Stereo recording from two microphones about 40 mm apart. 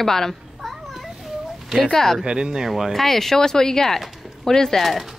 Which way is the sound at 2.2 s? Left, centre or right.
Centre.